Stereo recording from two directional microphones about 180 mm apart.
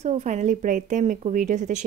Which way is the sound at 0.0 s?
40° right (ahead or behind).